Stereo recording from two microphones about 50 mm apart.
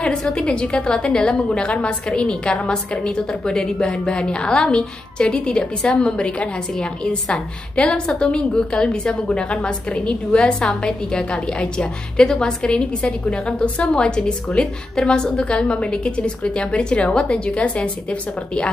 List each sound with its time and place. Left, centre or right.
0.0 s a woman's voice: centre